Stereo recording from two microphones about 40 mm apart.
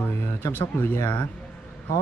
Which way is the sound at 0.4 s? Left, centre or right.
Left.